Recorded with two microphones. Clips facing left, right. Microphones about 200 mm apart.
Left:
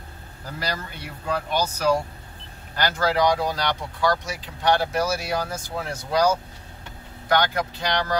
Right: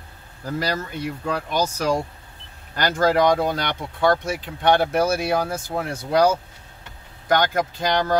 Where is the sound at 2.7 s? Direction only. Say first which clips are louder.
Right 3 dB; 45° right (ahead or behind).